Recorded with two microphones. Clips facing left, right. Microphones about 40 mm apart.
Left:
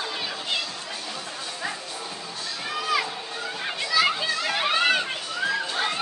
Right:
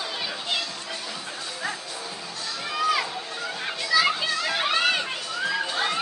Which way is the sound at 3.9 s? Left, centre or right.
Centre.